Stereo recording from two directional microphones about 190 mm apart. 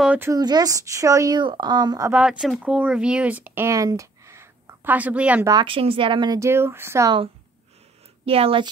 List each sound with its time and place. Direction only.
0.0 s speech: 5° right (ahead or behind)
0.3 s a woman's voice: 20° right (ahead or behind)
2.1 s speech: 5° right (ahead or behind)
5.5 s a woman's voice: 25° right (ahead or behind)
8.3 s a woman's voice: 30° right (ahead or behind)